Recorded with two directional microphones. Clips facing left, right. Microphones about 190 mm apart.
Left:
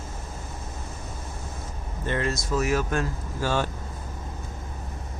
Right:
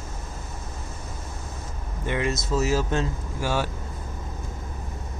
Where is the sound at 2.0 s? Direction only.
15° right (ahead or behind).